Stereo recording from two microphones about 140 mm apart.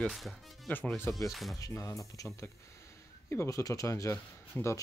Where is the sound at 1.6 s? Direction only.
20° left (ahead or behind).